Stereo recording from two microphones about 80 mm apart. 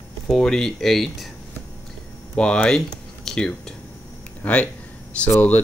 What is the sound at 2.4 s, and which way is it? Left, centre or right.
Speech, centre.